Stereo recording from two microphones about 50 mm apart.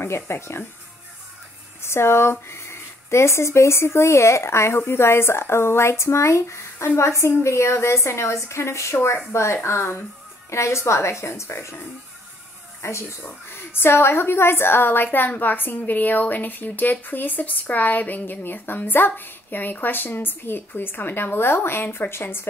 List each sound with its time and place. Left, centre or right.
0.0 s speech: left
1.8 s a woman's voice: left
10.5 s a woman's voice: left
12.8 s a woman's voice: left